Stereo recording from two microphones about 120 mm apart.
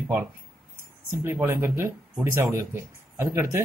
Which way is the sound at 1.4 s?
20° right (ahead or behind).